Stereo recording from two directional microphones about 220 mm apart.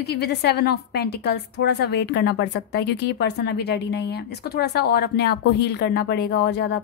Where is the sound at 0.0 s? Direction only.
50° left (ahead or behind).